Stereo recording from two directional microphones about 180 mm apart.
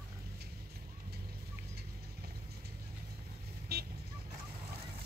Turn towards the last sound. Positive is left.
turn(degrees=-60)  # may be behind; listen again after turning